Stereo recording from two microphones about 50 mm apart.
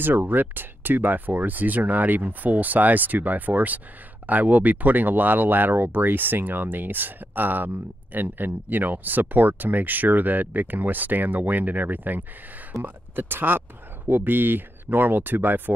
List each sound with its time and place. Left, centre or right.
0.0 s speech: right